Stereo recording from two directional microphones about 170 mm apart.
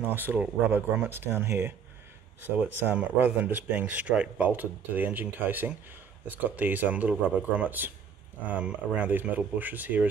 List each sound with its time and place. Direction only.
0.0 s speech: 10° right (ahead or behind)